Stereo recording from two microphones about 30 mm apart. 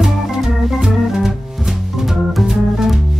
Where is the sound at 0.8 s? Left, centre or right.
Centre.